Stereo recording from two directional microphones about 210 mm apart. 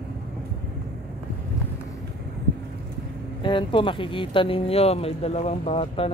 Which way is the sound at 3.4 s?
25° left (ahead or behind).